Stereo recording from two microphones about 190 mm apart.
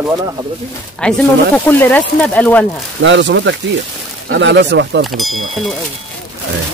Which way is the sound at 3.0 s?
70° right (ahead or behind).